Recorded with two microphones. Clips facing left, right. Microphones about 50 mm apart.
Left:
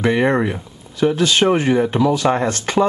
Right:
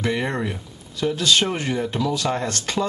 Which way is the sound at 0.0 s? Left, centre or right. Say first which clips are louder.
Left 8 dB; left.